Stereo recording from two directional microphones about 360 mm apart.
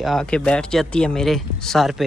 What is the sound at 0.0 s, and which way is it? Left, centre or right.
Speech, centre.